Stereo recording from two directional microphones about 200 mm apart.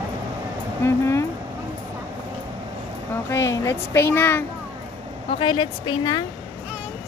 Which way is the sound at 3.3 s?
15° left (ahead or behind).